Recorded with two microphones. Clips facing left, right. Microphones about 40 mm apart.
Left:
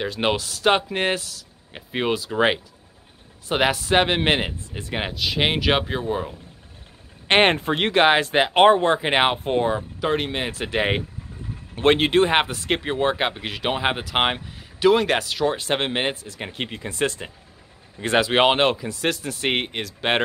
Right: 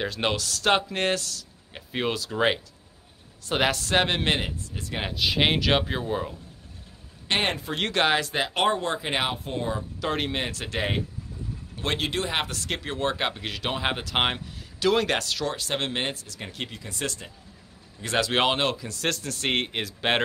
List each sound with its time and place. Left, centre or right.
0.0 s speech: centre
0.3 s speech: centre
4.2 s speech: left
5.1 s speech: centre
7.2 s speech: left
7.7 s speech: left
9.9 s speech: centre
10.5 s speech: left
11.7 s speech: left; by 15.5 s centre
15.5 s speech: left
18.2 s speech: centre
18.9 s speech: centre
19.7 s speech: centre